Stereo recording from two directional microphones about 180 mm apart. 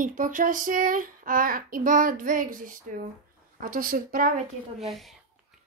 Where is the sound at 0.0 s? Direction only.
45° right (ahead or behind).